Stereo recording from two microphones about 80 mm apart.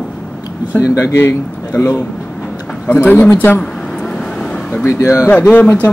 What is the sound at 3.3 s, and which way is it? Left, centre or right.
Speech, left.